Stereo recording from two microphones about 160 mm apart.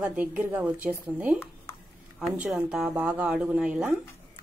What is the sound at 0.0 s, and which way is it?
A woman's voice, 10° right (ahead or behind).